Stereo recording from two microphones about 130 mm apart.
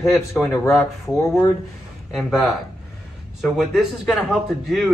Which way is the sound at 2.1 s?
Centre (ahead or behind).